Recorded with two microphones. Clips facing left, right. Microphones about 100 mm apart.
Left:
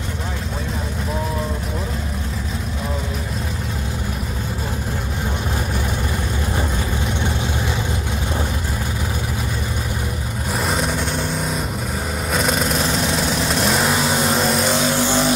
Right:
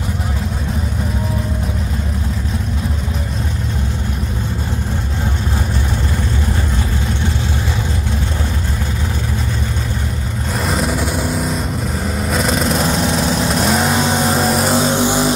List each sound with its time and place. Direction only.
10.6 s vehicle: centre (ahead or behind); by 15.2 s 20° right (ahead or behind)